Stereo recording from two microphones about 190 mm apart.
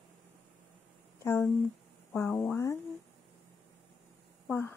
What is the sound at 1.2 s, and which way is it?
Speech, 10° left (ahead or behind).